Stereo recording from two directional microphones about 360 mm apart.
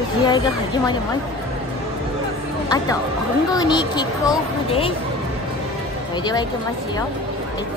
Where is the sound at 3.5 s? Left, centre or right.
Centre.